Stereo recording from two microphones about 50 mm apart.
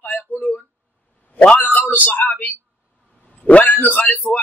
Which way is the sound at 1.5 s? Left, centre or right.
Left.